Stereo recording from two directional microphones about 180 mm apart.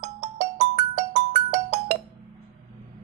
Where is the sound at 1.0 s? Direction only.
40° right (ahead or behind).